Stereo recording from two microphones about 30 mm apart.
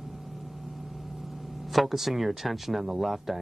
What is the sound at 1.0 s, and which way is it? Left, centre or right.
Speech, centre.